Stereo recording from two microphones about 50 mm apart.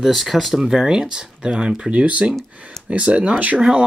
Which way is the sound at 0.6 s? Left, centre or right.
Centre.